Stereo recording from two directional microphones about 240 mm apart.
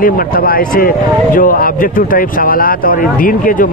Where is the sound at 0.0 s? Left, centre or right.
Left.